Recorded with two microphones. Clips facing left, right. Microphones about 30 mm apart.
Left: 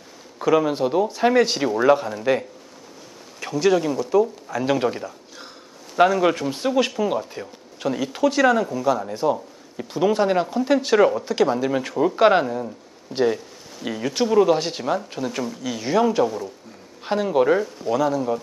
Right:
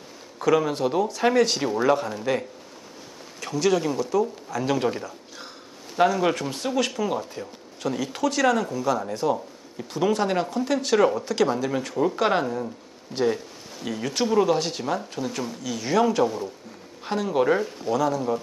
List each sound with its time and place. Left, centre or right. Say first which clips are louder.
0.4 s speech: left 2 dB; centre